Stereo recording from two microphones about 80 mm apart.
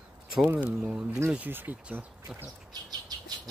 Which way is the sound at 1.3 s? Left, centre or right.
Right.